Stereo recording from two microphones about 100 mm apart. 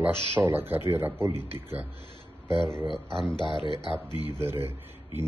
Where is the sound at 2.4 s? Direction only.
50° left (ahead or behind).